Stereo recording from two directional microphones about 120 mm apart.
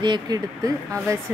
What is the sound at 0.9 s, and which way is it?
Speech, 25° right (ahead or behind).